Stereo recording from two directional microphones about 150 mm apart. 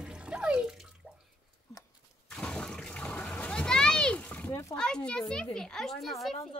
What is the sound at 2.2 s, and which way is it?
Water, 5° left (ahead or behind).